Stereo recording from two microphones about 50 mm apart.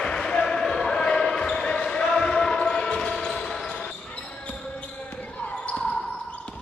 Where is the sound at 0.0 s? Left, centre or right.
Centre.